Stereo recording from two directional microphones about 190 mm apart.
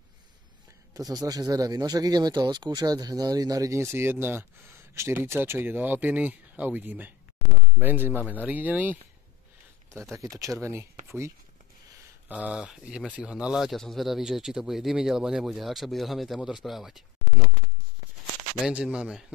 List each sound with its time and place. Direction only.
0.9 s speech: 20° right (ahead or behind)
10.1 s speech: 15° right (ahead or behind)
12.3 s speech: 5° right (ahead or behind)
18.7 s speech: 5° right (ahead or behind)